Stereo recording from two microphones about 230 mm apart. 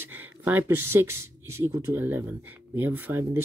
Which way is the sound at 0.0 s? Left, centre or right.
Centre.